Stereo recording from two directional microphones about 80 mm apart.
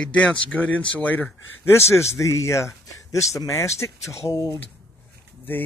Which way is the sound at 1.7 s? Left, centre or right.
Left.